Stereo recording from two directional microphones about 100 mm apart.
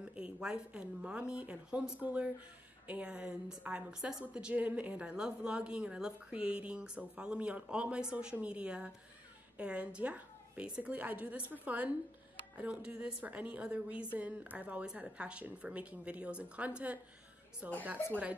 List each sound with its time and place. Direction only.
0.0 s a woman's voice: 10° right (ahead or behind)